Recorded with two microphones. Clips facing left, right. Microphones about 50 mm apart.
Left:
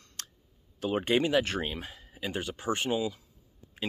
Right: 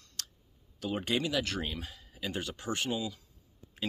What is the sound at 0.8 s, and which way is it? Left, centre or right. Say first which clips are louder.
Speech: left 5 dB; left.